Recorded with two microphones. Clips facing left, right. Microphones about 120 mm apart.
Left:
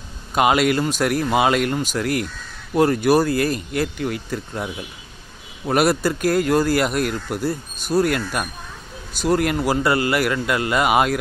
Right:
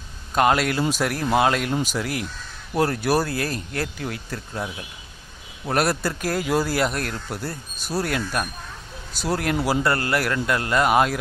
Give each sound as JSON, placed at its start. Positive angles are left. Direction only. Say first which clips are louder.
{"t": 0.3, "sound": "speech", "louder": "left 3 dB", "side_deg": 5}
{"t": 5.7, "sound": "speech", "louder": "left 4 dB", "side_deg": 5}